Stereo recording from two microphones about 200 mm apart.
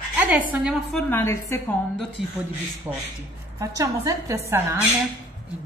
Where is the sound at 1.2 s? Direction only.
15° left (ahead or behind).